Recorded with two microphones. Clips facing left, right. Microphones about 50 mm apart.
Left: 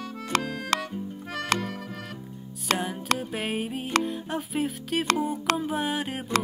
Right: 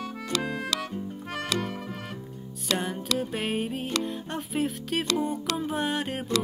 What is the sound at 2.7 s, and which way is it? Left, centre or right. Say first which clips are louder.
Music: left 1 dB; centre.